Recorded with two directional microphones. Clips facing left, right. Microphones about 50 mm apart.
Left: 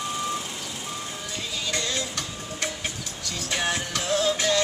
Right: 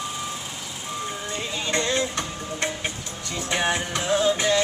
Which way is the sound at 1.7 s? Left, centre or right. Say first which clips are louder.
Right 6 dB; right.